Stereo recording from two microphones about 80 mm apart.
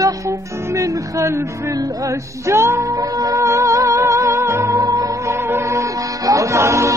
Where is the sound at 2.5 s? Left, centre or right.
Right.